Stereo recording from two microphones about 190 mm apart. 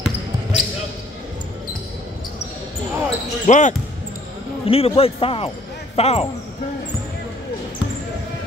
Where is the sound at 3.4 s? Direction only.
40° left (ahead or behind).